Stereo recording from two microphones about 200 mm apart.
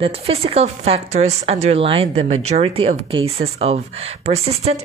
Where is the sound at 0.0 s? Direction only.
30° right (ahead or behind).